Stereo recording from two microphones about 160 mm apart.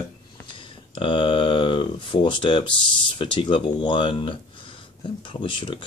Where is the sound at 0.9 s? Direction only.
30° left (ahead or behind).